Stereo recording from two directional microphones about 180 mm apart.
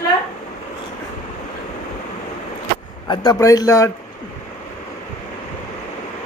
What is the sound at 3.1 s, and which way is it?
Speech, 20° left (ahead or behind).